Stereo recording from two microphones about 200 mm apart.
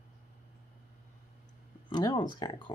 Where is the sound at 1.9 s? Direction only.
20° left (ahead or behind).